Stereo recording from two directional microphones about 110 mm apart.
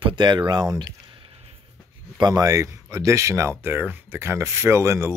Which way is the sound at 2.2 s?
35° right (ahead or behind).